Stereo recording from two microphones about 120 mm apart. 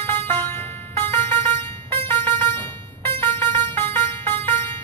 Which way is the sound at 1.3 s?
20° left (ahead or behind).